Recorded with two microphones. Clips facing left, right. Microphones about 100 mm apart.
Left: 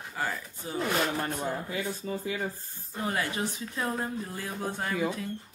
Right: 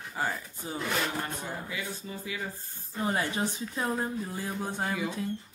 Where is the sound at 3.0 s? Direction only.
25° right (ahead or behind).